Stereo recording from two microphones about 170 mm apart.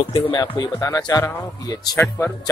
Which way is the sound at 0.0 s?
30° left (ahead or behind).